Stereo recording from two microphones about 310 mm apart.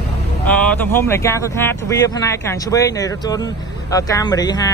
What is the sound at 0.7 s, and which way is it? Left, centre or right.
Speech, centre.